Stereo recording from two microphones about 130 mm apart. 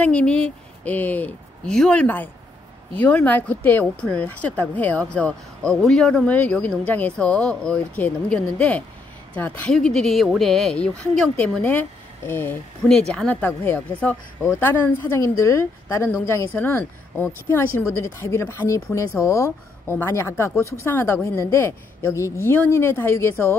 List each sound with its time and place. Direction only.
0.0 s speech: 10° left (ahead or behind)